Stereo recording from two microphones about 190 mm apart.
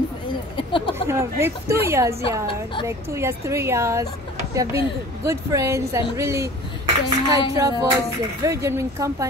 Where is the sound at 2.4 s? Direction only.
25° left (ahead or behind).